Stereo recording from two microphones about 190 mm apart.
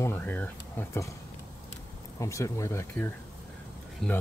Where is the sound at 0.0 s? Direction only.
10° left (ahead or behind).